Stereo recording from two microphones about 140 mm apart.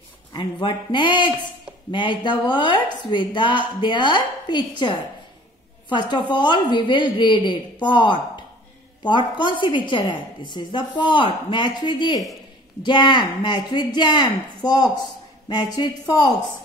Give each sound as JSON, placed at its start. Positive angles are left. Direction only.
{"t": 0.3, "sound": "a woman's voice", "side_deg": 35}